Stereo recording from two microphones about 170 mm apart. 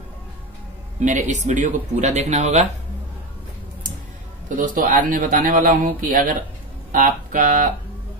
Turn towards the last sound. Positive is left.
turn(degrees=-50)  # may be behind; listen again after turning